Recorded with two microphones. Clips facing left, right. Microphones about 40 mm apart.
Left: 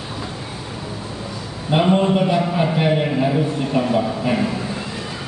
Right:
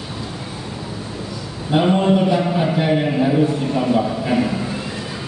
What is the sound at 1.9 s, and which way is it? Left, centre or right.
A man's voice, centre.